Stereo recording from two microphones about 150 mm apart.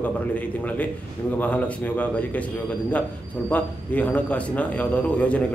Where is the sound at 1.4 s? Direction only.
10° left (ahead or behind).